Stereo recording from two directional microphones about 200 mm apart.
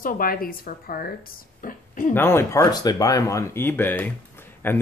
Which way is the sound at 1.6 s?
45° left (ahead or behind).